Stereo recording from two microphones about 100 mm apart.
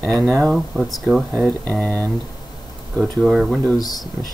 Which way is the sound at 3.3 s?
5° right (ahead or behind).